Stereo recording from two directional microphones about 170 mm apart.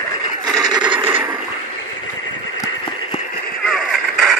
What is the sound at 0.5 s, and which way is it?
Mechanisms, 25° right (ahead or behind).